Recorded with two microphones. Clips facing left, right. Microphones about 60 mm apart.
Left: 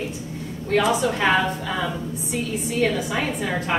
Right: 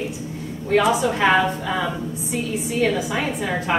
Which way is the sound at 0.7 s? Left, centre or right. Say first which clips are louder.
Right 2 dB; centre.